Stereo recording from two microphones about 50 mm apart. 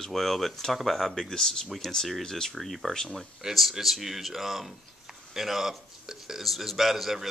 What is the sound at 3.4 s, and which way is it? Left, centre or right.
Speech, centre.